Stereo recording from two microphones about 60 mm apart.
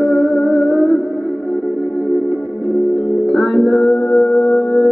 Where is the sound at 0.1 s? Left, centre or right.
Centre.